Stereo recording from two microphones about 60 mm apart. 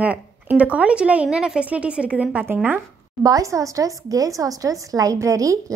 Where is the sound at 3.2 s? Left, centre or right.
Right.